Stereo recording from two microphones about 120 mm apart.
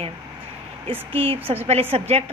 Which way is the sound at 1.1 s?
50° right (ahead or behind).